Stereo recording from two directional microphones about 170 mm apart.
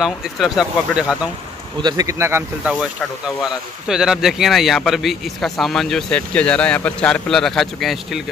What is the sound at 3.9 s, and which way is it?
Speech, 5° right (ahead or behind).